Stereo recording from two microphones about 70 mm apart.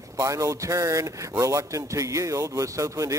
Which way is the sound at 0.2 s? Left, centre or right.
Right.